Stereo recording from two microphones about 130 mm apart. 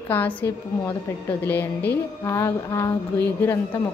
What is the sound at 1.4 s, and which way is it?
Music, 15° left (ahead or behind).